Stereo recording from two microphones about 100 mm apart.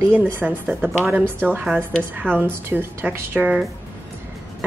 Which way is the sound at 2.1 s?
20° right (ahead or behind).